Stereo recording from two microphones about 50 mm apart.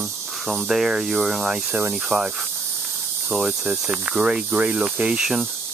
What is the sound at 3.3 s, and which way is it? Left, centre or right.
Speech, centre.